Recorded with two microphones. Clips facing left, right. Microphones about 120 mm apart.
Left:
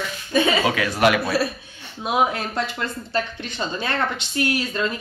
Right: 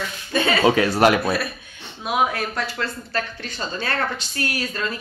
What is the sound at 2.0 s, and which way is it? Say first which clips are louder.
Speech: left 1 dB; 25° left (ahead or behind).